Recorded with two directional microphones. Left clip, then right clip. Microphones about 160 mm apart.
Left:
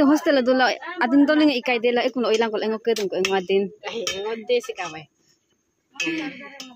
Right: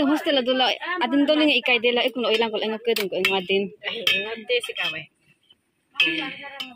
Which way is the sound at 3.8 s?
90° left.